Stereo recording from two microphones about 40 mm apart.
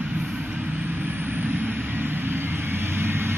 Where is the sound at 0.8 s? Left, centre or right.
Right.